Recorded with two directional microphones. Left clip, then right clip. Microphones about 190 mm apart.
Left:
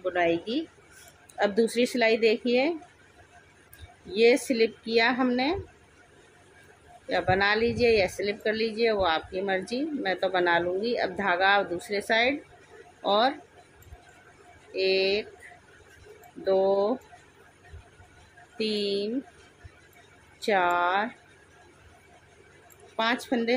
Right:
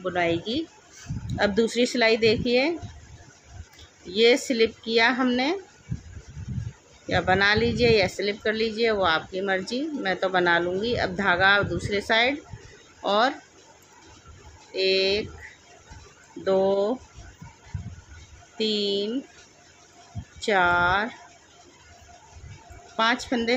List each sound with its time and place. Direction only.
0.0 s speech: 5° right (ahead or behind)
4.1 s speech: 10° right (ahead or behind)
7.1 s speech: 5° right (ahead or behind)
14.7 s speech: 5° right (ahead or behind)
16.4 s speech: 5° right (ahead or behind)
18.6 s speech: 5° right (ahead or behind)
20.3 s speech: 5° right (ahead or behind)
22.9 s speech: 5° right (ahead or behind)